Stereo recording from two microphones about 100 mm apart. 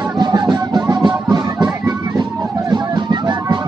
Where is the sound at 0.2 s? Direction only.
45° right (ahead or behind).